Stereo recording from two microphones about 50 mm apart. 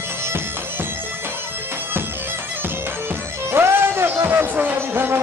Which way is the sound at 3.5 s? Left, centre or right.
Right.